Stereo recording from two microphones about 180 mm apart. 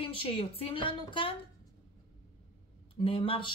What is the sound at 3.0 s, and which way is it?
Speech, 30° left (ahead or behind).